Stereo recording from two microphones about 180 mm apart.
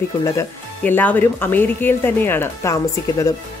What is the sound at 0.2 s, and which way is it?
Speech, 15° left (ahead or behind).